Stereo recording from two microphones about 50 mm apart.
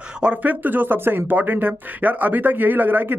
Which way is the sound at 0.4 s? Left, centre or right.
Right.